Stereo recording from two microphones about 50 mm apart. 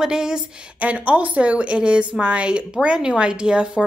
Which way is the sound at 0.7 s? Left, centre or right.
Right.